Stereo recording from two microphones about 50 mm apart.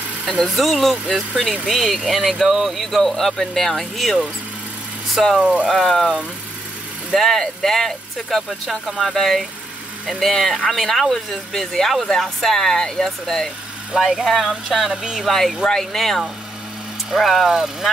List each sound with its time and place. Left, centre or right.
0.5 s speech: centre
5.4 s speech: right
5.7 s speech: centre
15.2 s speech: centre